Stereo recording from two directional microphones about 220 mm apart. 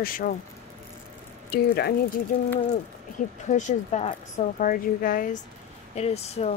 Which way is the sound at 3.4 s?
35° left (ahead or behind).